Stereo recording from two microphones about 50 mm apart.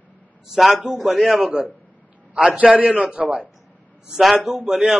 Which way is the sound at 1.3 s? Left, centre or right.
Right.